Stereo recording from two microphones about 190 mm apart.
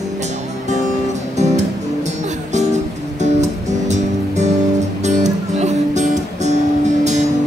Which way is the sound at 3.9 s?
35° right (ahead or behind).